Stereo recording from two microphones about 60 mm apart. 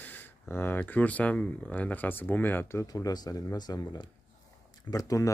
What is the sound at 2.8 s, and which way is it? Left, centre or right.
Speech, left.